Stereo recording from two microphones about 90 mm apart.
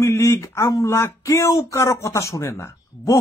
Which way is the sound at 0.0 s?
30° left (ahead or behind).